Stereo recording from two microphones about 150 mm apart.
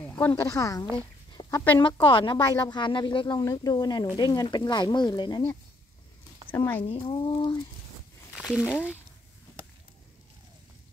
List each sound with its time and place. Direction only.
0.0 s a sound: 10° left (ahead or behind)
0.4 s speech: 20° left (ahead or behind)
1.3 s a sound: 30° left (ahead or behind)
1.8 s speech: 30° left (ahead or behind)
6.5 s speech: 15° left (ahead or behind)
6.8 s speech: 40° left (ahead or behind)
8.4 s speech: 5° right (ahead or behind)